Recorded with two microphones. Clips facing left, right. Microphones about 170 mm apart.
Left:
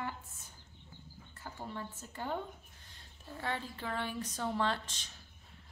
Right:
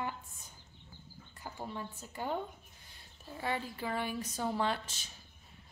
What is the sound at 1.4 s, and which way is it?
Speech, 15° right (ahead or behind).